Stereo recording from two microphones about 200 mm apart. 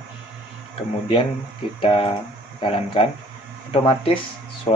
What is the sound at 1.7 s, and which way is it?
Speech, 25° left (ahead or behind).